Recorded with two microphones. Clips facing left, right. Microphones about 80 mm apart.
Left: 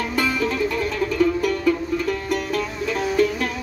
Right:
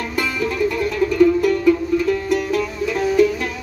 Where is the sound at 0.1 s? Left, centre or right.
Centre.